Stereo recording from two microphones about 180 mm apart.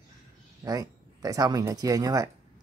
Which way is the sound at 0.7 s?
20° right (ahead or behind).